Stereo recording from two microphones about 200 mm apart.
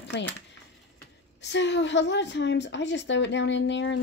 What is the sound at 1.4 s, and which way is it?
A woman's voice, 60° left (ahead or behind).